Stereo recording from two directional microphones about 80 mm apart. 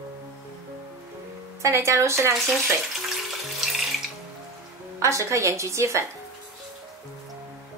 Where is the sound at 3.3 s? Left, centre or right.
Centre.